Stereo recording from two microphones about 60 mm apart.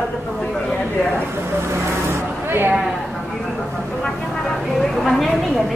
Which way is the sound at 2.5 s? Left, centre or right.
Right.